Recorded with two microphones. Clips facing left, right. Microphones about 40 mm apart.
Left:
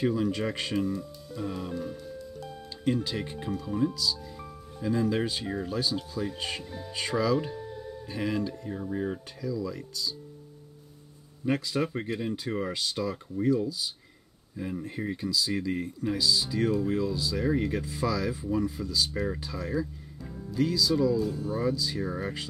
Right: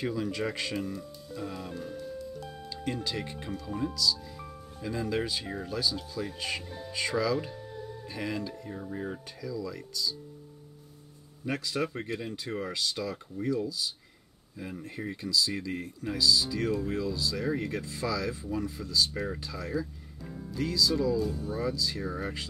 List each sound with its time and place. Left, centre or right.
0.0 s speech: centre
0.7 s music: centre
2.8 s speech: centre
3.4 s speech: centre
3.9 s speech: centre
5.8 s speech: centre
6.6 s speech: centre
6.9 s speech: centre
11.4 s speech: centre
15.0 s speech: centre
20.2 s music: centre
20.6 s speech: centre